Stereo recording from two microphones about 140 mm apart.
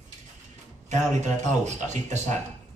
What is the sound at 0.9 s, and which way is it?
Speech, 55° right (ahead or behind).